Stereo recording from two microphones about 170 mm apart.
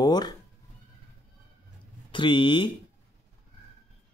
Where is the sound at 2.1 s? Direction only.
30° left (ahead or behind).